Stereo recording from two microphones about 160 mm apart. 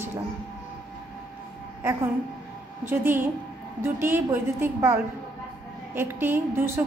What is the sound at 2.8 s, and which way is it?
A woman's voice, 15° right (ahead or behind).